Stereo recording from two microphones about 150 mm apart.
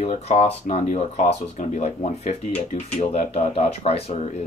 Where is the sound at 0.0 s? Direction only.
45° left (ahead or behind).